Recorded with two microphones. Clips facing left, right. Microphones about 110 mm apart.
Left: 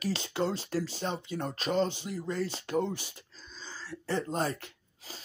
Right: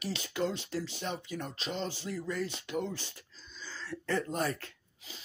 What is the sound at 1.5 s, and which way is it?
Speech, 45° left (ahead or behind).